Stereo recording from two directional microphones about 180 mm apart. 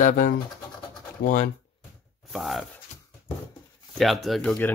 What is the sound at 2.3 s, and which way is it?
Speech, centre (ahead or behind).